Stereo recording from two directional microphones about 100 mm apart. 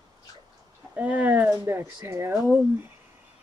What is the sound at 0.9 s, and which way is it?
Speech, 15° right (ahead or behind).